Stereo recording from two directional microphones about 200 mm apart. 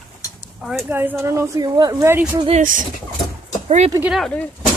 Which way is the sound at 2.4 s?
40° right (ahead or behind).